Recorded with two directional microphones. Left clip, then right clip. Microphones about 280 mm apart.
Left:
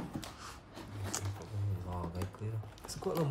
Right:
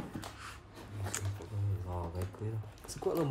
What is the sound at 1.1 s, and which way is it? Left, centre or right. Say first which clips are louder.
Wild animals: left 1 dB; centre.